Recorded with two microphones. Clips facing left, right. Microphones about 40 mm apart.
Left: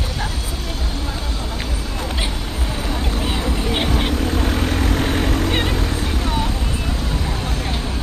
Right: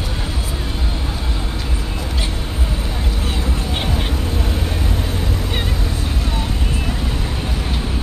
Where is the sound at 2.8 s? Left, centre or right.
Left.